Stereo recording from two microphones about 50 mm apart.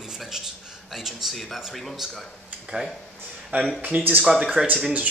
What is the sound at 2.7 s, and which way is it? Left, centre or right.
A man's voice, right.